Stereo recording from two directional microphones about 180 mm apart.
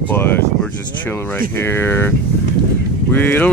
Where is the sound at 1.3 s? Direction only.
10° left (ahead or behind).